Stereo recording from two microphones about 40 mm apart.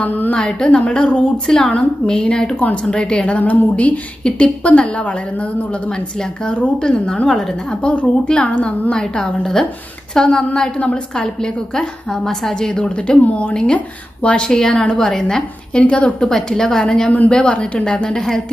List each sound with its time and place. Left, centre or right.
0.0 s a woman's voice: left
0.3 s a woman's voice: centre
1.5 s a woman's voice: centre
2.6 s a woman's voice: left
3.3 s speech: left
4.2 s a woman's voice: left; by 7.8 s centre
7.8 s a woman's voice: left
9.0 s a woman's voice: centre
15.0 s a woman's voice: centre
15.8 s speech: left
16.2 s a woman's voice: centre
17.3 s a woman's voice: left